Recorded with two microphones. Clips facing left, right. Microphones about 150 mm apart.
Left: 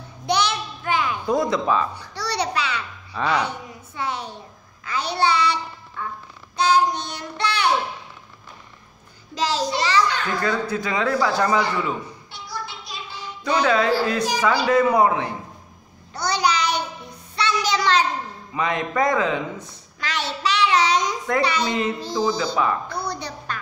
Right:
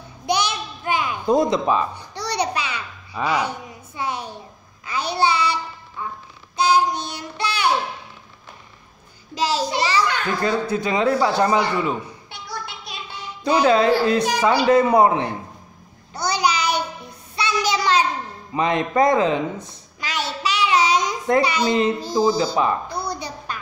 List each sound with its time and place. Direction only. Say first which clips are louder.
0.3 s a sound: even; 15° right (ahead or behind)
4.8 s child singing: right 1 dB; 10° right (ahead or behind)
9.3 s a child's voice: right 1 dB; 10° right (ahead or behind)
10.5 s a man's voice: right 3 dB; 20° right (ahead or behind)
12.3 s a sound: even; 60° right (ahead or behind)
13.4 s a man's voice: right 3 dB; 30° right (ahead or behind)
16.2 s a sound: even; 10° right (ahead or behind)
17.4 s child singing: even; 10° right (ahead or behind)
18.5 s a man's voice: right 4 dB; 25° right (ahead or behind)
20.0 s child singing: even; 10° right (ahead or behind)
21.4 s a child's voice: right 1 dB; 10° right (ahead or behind)
21.6 s a man's voice: right 4 dB; 30° right (ahead or behind)
22.8 s a sound: right 1 dB; 10° right (ahead or behind)